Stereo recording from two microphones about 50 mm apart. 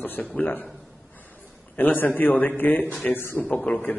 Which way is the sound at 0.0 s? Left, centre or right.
Left.